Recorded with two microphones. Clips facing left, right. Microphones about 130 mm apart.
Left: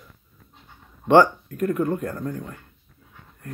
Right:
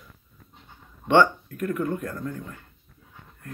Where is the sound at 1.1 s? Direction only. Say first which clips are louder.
Left 3 dB; 35° left (ahead or behind).